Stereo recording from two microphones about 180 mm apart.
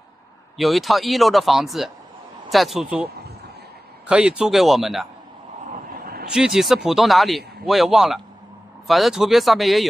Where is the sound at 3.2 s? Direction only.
65° right (ahead or behind).